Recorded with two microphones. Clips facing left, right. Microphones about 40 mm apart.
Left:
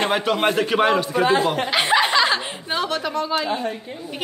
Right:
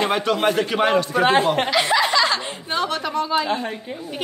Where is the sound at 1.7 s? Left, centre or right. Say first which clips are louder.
Left 3 dB; left.